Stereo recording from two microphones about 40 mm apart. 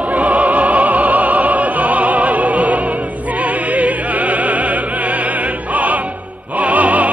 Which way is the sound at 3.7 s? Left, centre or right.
Right.